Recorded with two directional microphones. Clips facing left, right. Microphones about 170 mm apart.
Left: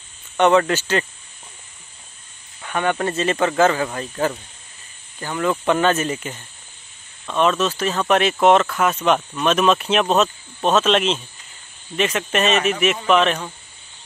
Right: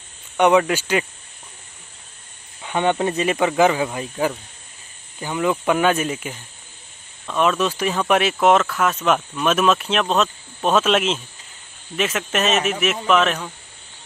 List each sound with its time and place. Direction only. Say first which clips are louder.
0.4 s speech: even; 10° right (ahead or behind)
2.6 s speech: right 2 dB; 20° right (ahead or behind); by 13.5 s centre (ahead or behind)